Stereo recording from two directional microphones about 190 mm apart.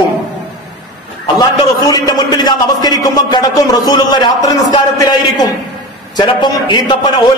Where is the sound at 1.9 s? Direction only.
20° left (ahead or behind).